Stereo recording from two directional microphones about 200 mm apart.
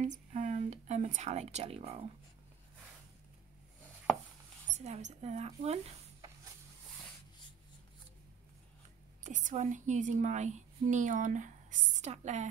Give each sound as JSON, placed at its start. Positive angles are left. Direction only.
{"t": 0.0, "sound": "speech", "side_deg": -40}
{"t": 4.6, "sound": "a woman's voice", "side_deg": -35}
{"t": 9.2, "sound": "a woman's voice", "side_deg": -40}